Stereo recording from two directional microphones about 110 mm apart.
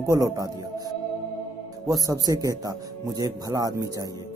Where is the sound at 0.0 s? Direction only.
30° right (ahead or behind).